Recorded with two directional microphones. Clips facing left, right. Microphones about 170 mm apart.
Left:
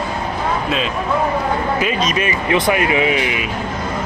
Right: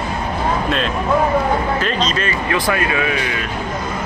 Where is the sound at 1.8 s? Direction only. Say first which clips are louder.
Left 1 dB; 10° left (ahead or behind).